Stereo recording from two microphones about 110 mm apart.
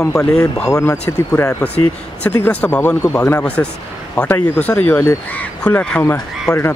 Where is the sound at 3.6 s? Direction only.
25° left (ahead or behind); by 6.6 s 5° left (ahead or behind).